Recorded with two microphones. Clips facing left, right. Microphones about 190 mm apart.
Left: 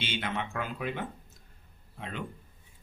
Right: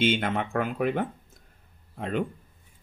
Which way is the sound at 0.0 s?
50° right (ahead or behind).